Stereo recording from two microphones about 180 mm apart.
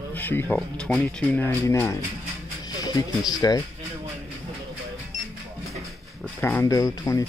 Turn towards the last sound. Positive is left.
turn(degrees=20)  # may be behind; listen again after turning